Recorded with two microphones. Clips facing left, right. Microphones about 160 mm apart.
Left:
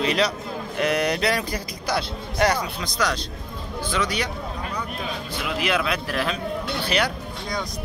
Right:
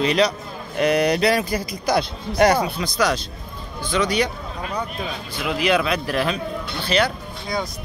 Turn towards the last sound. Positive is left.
turn(degrees=10)  # may be behind; listen again after turning